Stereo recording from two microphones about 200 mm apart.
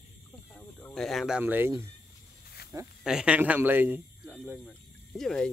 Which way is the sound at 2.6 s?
50° left (ahead or behind).